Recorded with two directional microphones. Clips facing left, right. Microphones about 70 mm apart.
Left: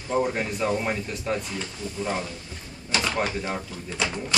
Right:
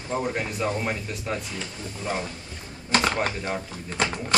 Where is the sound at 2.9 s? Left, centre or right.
Right.